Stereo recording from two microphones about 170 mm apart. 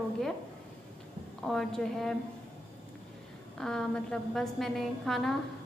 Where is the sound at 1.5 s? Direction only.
5° left (ahead or behind).